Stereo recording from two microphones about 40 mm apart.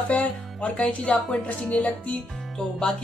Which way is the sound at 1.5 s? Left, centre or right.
Left.